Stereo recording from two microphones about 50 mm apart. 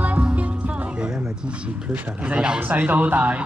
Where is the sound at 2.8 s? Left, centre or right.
Right.